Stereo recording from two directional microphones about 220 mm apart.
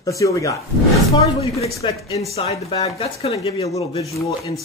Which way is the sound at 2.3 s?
25° left (ahead or behind).